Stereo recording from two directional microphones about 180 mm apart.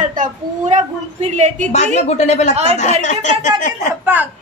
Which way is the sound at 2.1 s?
40° left (ahead or behind).